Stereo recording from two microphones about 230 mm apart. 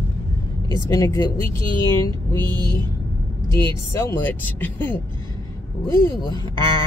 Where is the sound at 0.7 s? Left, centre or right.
Centre.